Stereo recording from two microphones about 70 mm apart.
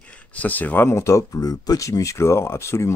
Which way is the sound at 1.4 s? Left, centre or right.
Left.